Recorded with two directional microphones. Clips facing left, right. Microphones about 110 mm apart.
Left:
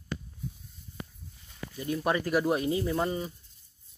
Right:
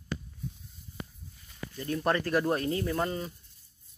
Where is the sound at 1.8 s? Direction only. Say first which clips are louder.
Even; 10° left (ahead or behind).